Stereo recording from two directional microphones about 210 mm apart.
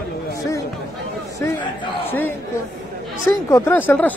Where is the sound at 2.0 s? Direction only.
10° left (ahead or behind).